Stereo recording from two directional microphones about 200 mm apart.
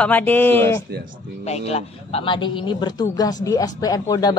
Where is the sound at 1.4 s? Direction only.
30° left (ahead or behind).